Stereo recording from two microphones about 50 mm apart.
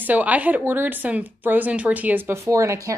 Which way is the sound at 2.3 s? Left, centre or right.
Right.